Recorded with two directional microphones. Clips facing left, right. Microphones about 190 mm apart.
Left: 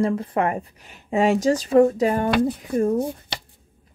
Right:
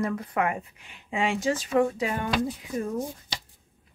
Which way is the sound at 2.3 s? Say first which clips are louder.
Left 7 dB; 60° left (ahead or behind).